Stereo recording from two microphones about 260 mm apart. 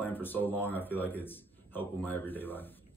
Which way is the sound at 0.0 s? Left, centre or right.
Centre.